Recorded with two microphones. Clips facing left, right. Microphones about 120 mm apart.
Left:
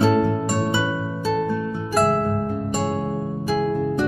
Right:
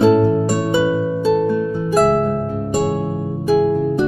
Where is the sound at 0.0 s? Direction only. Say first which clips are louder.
Right 6 dB; 10° right (ahead or behind).